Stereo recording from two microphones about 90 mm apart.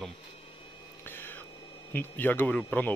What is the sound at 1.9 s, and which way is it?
Speech, 20° left (ahead or behind).